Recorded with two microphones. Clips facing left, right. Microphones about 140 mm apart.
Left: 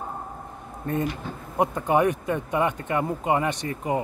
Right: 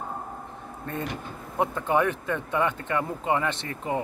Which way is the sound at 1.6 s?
15° left (ahead or behind).